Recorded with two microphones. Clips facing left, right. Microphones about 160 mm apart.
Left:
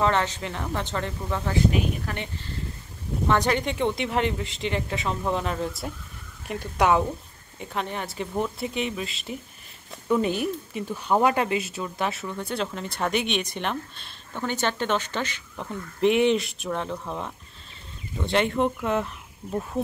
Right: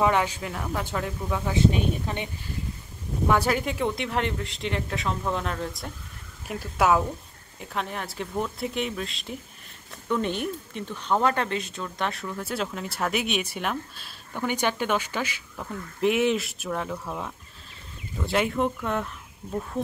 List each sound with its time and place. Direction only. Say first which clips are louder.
0.0 s speech: right 1 dB; 10° right (ahead or behind)
1.5 s speech: right 1 dB; 20° right (ahead or behind); by 19.0 s centre (ahead or behind)